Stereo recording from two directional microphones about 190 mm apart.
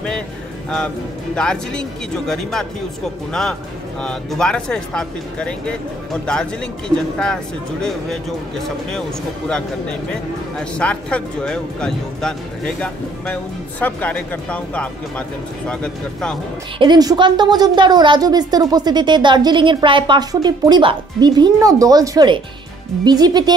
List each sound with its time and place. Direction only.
1.3 s speech: 5° left (ahead or behind)
4.0 s speech: 5° left (ahead or behind)
7.8 s speech: 5° left (ahead or behind)
10.6 s speech: 5° left (ahead or behind)
16.7 s a woman's voice: 25° right (ahead or behind)